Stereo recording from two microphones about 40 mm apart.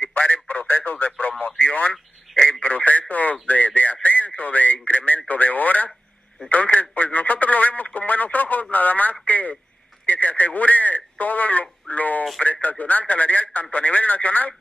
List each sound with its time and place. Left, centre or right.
0.0 s speech: left
2.3 s speech: centre
2.6 s speech: left